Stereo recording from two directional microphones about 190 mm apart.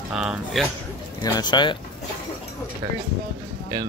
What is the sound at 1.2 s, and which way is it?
Speech, 20° left (ahead or behind).